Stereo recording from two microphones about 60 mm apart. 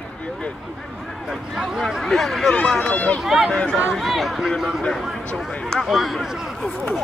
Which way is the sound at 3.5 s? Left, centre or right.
Centre.